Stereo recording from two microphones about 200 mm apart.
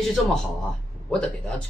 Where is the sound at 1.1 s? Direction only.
5° left (ahead or behind).